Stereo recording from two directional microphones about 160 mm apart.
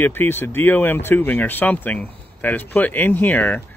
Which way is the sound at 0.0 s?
15° left (ahead or behind).